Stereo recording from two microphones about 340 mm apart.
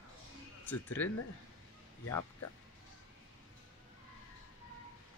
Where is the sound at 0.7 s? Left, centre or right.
Centre.